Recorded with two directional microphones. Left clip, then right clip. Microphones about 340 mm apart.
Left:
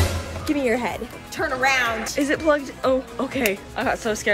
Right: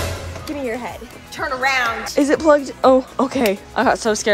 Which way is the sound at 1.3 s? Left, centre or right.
Centre.